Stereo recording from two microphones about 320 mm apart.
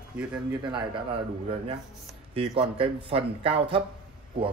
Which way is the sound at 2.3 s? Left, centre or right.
Centre.